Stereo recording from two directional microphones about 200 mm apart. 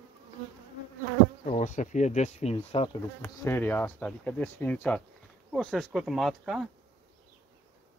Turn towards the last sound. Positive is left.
turn(degrees=0)  # may be behind; listen again after turning